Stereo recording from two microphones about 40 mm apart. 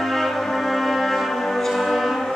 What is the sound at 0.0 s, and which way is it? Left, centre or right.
Brass instrument, centre.